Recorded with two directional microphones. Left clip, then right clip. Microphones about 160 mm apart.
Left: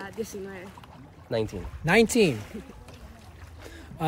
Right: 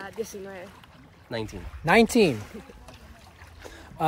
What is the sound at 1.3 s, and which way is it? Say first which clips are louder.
Speech: left 5 dB; 30° left (ahead or behind).